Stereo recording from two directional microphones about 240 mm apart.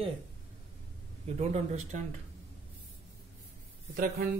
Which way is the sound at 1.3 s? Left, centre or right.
Right.